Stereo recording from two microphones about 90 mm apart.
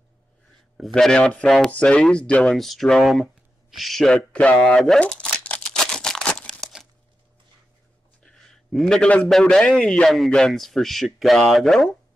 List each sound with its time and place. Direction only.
0.7 s a man's voice: centre (ahead or behind)
2.4 s a man's voice: centre (ahead or behind)
5.0 s crumpling: 15° left (ahead or behind)
8.2 s a sound: 10° left (ahead or behind)
8.7 s a man's voice: 5° left (ahead or behind)